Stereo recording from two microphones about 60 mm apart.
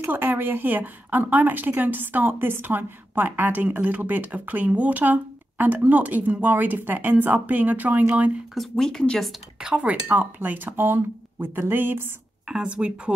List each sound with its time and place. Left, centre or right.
0.1 s a woman's voice: right
8.5 s speech: centre
9.6 s a woman's voice: centre; by 12.1 s right
12.4 s speech: centre